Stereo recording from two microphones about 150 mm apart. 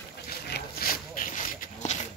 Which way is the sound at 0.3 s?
85° left.